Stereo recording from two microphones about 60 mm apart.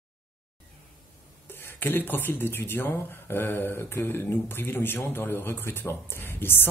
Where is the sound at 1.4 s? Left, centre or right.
Left.